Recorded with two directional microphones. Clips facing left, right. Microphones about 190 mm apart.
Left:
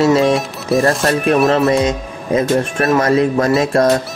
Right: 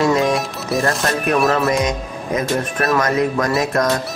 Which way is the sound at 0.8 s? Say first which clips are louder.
Left 4 dB; 25° left (ahead or behind).